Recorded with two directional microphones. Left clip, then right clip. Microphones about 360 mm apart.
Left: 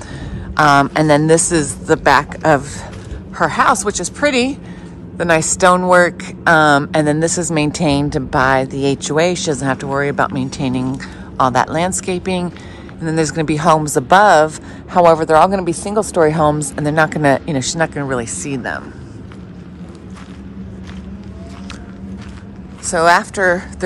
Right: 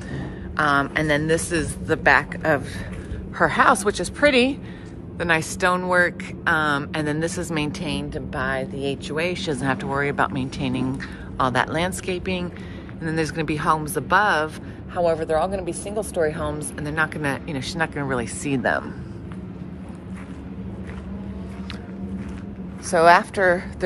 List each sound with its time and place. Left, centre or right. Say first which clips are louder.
0.6 s a woman's voice: left 9 dB; centre
22.8 s speech: left 3 dB; centre